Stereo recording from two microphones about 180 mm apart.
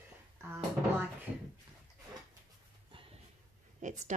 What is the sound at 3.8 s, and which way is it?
Speech, 40° right (ahead or behind).